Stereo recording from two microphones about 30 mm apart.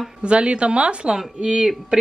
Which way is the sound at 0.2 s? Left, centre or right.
Right.